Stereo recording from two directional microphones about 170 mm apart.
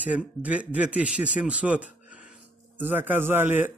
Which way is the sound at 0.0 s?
10° right (ahead or behind).